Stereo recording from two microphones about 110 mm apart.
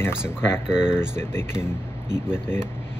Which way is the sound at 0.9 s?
20° left (ahead or behind).